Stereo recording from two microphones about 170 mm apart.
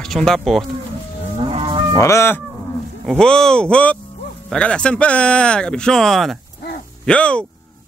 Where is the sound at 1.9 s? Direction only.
15° left (ahead or behind).